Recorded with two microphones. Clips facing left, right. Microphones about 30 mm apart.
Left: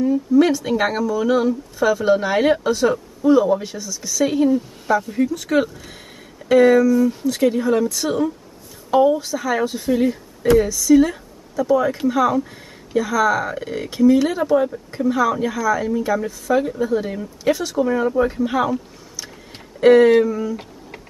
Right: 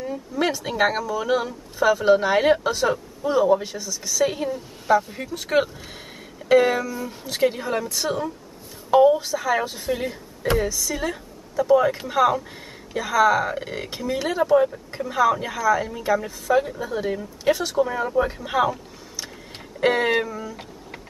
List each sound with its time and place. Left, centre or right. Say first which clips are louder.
0.0 s a woman's voice: left 9 dB; centre
17.8 s speech: left 5 dB; centre
19.1 s a sound: even; centre
20.3 s speech: left 8 dB; centre